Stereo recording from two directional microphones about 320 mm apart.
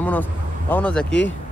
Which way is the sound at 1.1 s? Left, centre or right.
Left.